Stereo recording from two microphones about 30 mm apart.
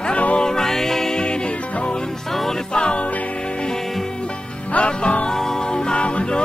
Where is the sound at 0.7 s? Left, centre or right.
Centre.